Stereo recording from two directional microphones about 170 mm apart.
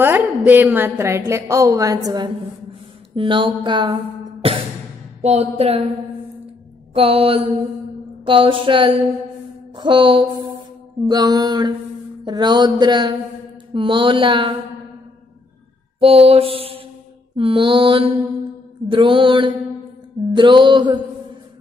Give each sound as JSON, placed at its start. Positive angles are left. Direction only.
{"t": 0.0, "sound": "a woman's voice", "side_deg": -10}
{"t": 5.2, "sound": "mantra", "side_deg": -40}
{"t": 6.9, "sound": "mantra", "side_deg": -35}
{"t": 9.8, "sound": "speech", "side_deg": -30}
{"t": 16.0, "sound": "mantra", "side_deg": -35}
{"t": 18.9, "sound": "speech", "side_deg": -30}